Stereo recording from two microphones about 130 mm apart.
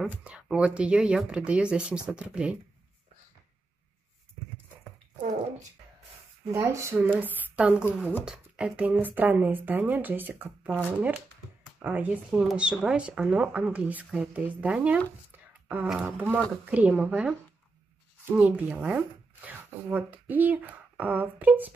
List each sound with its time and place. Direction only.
0.1 s speech: 10° right (ahead or behind)
6.4 s speech: 20° right (ahead or behind)
18.4 s speech: 10° right (ahead or behind)